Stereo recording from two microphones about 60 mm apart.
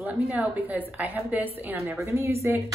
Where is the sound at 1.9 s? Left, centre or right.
Right.